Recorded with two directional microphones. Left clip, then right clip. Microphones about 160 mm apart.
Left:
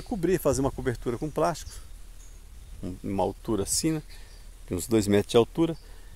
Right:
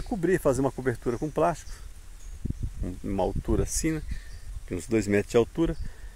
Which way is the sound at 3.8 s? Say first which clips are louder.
Left 1 dB; 15° left (ahead or behind).